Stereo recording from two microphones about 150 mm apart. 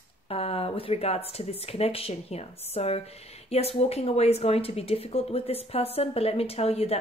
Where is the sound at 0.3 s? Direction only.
40° left (ahead or behind).